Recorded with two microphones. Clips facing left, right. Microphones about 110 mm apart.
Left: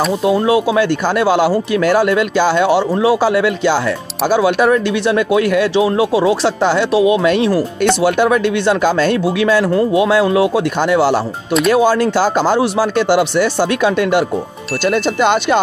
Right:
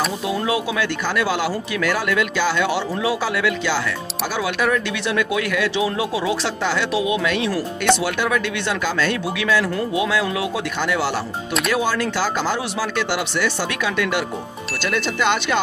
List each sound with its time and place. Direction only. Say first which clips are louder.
0.2 s speech: left 9 dB; 40° left (ahead or behind)